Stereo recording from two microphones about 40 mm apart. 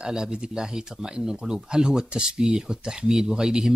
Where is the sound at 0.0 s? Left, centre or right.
Centre.